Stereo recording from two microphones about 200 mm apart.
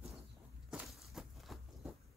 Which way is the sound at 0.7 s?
Centre (ahead or behind).